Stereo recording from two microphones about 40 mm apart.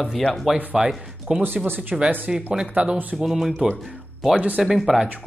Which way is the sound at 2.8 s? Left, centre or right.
Right.